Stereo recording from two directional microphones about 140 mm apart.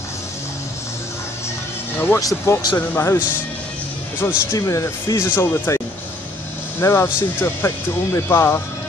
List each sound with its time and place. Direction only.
2.0 s speech: 20° left (ahead or behind)
4.5 s speech: 25° left (ahead or behind)
6.8 s speech: 20° left (ahead or behind)